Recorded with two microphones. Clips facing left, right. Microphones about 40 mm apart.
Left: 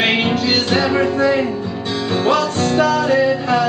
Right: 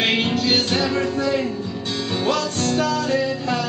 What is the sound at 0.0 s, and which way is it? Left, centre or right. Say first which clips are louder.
Music: left 4 dB; centre.